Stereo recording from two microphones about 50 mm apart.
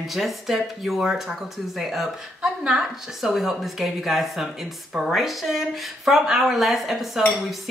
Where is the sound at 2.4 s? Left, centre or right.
Centre.